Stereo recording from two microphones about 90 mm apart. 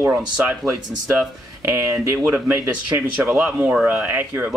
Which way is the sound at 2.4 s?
15° right (ahead or behind).